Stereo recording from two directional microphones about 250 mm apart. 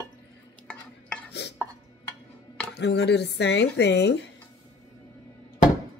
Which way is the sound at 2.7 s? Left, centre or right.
Left.